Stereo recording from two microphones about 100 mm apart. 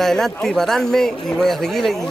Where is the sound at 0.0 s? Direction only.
5° left (ahead or behind).